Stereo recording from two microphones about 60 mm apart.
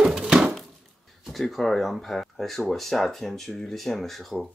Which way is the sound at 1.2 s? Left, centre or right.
Centre.